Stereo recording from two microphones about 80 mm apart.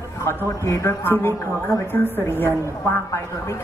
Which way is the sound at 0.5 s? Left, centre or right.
Left.